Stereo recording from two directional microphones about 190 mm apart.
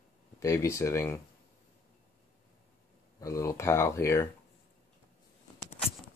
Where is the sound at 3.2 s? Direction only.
15° left (ahead or behind).